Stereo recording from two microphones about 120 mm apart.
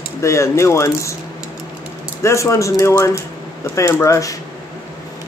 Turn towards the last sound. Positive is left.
turn(degrees=25)  # may be behind; listen again after turning